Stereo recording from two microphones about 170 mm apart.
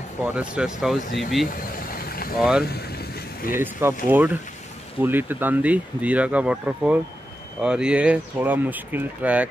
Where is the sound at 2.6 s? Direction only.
65° left (ahead or behind).